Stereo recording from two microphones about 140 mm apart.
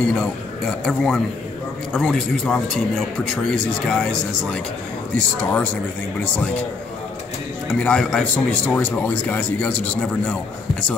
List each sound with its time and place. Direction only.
0.1 s a man's voice: 5° left (ahead or behind)
7.8 s a man's voice: 5° left (ahead or behind)